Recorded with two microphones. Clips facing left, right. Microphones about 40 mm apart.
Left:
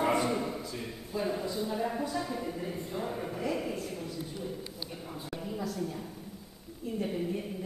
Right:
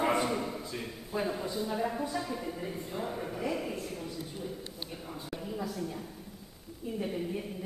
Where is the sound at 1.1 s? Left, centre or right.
Right.